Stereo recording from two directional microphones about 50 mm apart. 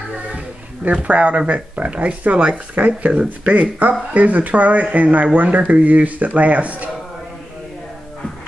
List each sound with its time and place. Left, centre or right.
0.8 s speech: right